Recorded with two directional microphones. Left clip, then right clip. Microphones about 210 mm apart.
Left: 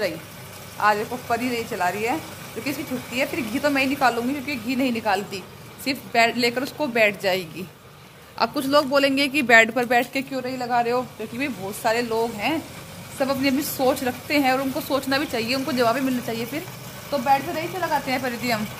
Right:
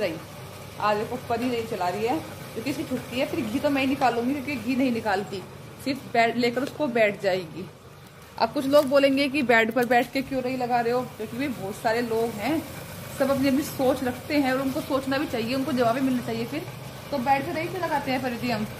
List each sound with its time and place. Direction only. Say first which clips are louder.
0.7 s a woman's voice: left 4 dB; 25° left (ahead or behind)
3.2 s a woman's voice: left 3 dB; 15° left (ahead or behind)
10.9 s a woman's voice: left 2 dB; 15° left (ahead or behind)